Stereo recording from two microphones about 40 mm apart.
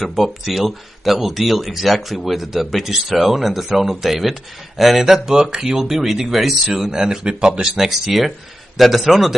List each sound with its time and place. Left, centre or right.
0.0 s speech: centre; by 5.8 s right
5.8 s speech: centre
7.3 s speech: right
7.6 s speech: centre